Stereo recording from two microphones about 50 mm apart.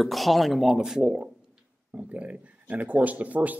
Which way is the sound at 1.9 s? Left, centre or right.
Right.